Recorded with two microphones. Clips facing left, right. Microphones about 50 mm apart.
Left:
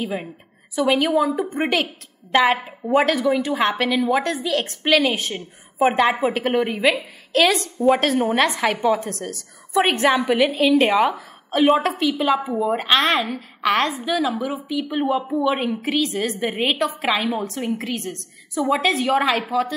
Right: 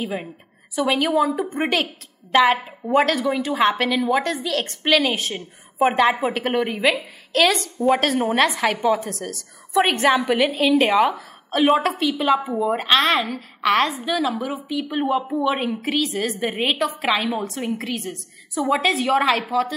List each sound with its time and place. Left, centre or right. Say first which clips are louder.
0.0 s a woman's voice: left 1 dB; centre